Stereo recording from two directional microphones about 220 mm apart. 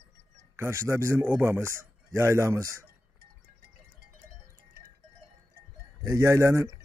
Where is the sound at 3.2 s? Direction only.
45° right (ahead or behind).